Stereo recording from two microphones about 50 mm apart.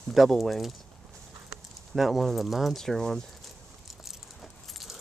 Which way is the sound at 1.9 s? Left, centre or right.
Centre.